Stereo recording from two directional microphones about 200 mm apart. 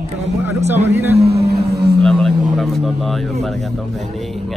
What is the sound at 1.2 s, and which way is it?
Speech, 55° right (ahead or behind).